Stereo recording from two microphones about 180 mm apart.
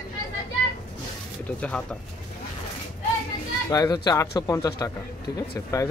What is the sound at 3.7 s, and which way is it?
Speech, 20° left (ahead or behind).